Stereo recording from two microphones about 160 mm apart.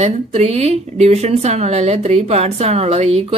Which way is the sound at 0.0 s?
40° right (ahead or behind).